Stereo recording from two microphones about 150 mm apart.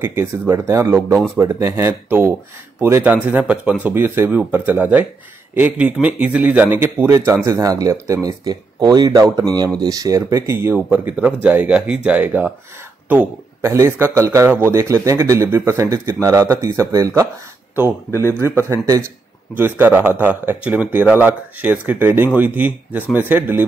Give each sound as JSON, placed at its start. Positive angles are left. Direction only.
{"t": 0.0, "sound": "a man's voice", "side_deg": -15}
{"t": 18.6, "sound": "a man's voice", "side_deg": -20}